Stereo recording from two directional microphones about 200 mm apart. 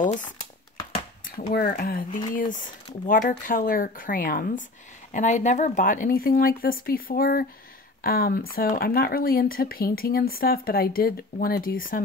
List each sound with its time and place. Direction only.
0.0 s speech: 40° left (ahead or behind)
1.5 s speech: 50° left (ahead or behind)